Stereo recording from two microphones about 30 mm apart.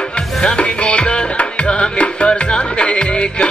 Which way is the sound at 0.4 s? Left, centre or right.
Left.